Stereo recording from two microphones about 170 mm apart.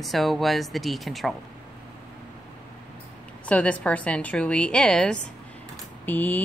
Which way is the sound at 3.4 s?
10° left (ahead or behind).